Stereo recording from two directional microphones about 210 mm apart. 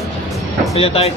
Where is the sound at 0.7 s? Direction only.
30° left (ahead or behind).